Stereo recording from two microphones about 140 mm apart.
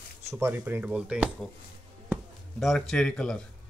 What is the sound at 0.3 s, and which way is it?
Speech, 15° right (ahead or behind).